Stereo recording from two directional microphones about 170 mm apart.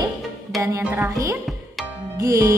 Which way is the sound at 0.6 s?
15° right (ahead or behind).